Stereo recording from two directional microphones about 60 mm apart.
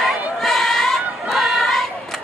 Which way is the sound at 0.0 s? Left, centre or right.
Centre.